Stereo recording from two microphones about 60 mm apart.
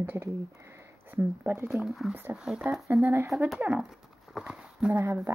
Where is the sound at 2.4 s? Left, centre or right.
Centre.